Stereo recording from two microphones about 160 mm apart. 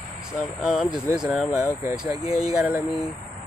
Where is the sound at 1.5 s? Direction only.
20° left (ahead or behind).